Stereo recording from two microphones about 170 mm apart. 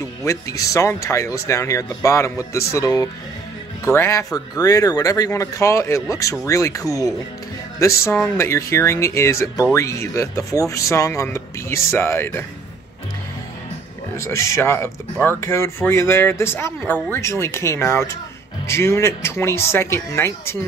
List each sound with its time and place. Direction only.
0.2 s speech: 20° left (ahead or behind)
14.2 s speech: 15° left (ahead or behind)